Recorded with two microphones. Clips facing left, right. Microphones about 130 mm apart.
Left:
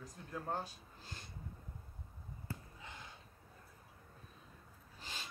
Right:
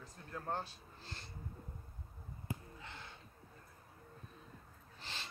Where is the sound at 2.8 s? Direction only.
15° left (ahead or behind).